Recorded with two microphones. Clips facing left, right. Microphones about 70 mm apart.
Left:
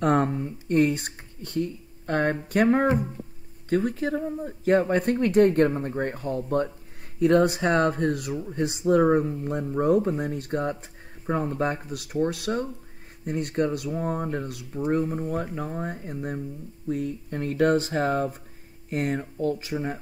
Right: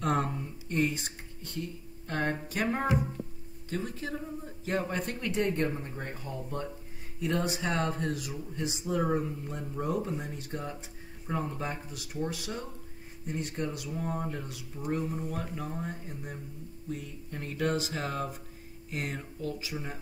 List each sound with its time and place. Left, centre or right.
0.0 s a sound: left
0.7 s speech: left
13.8 s speech: left
14.9 s speech: left